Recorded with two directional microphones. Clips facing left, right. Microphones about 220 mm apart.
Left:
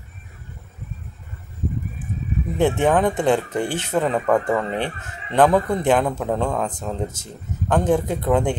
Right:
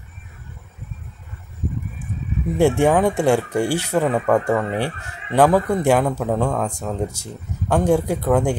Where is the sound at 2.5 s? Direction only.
10° right (ahead or behind).